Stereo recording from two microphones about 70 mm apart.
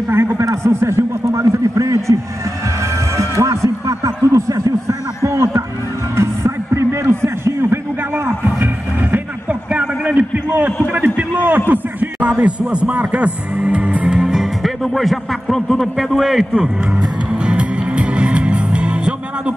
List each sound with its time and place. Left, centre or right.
0.1 s a man's voice: right
3.2 s music: right
5.2 s a sound: right
6.1 s music: right
9.1 s a sound: centre
11.7 s a man's voice: right; by 16.4 s centre
17.5 s music: centre